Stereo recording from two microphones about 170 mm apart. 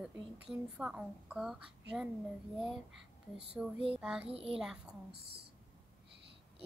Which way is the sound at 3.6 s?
10° right (ahead or behind).